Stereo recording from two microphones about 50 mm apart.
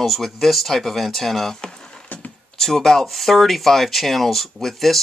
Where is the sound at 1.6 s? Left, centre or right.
Centre.